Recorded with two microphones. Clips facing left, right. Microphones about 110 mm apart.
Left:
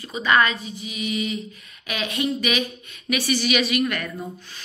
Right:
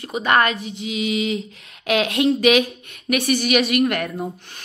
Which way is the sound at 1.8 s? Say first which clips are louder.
Right 8 dB; 80° right.